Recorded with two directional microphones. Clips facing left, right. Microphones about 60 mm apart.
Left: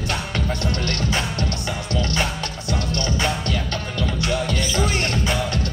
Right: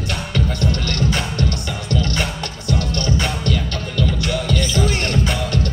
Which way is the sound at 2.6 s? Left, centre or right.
Left.